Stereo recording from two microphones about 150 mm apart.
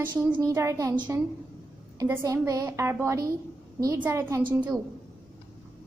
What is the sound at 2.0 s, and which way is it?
A woman's voice, 20° right (ahead or behind).